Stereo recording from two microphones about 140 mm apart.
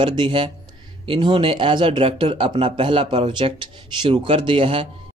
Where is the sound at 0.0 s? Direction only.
35° right (ahead or behind).